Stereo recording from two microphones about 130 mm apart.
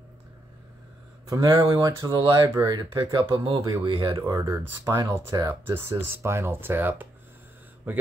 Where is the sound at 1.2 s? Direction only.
25° right (ahead or behind).